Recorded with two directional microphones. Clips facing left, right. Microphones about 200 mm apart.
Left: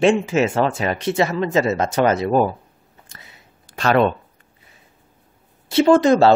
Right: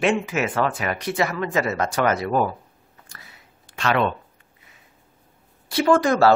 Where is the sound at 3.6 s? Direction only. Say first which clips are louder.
Left 5 dB; 40° left (ahead or behind).